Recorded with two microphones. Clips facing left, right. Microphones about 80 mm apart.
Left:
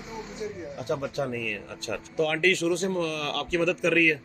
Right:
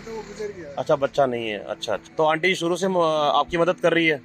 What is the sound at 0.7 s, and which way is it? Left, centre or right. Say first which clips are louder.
Speech: right 11 dB; right.